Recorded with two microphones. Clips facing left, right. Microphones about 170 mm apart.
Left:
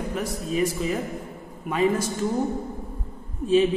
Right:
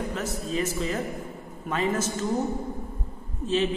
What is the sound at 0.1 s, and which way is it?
A man's voice, 10° left (ahead or behind).